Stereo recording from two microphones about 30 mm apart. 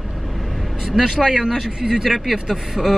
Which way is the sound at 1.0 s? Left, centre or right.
Centre.